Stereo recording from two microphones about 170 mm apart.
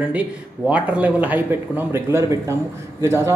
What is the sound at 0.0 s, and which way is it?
Speech, 10° right (ahead or behind).